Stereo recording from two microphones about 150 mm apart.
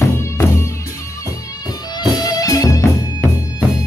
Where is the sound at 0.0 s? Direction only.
20° left (ahead or behind).